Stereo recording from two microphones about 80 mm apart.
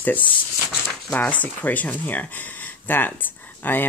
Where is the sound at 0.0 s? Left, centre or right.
Left.